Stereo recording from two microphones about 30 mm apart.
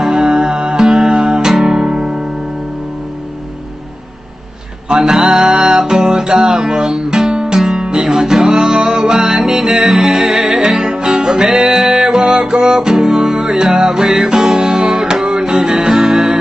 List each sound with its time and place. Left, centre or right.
0.0 s music: centre
1.6 s guitar: right
5.0 s music: centre
5.9 s music: centre
10.8 s music: right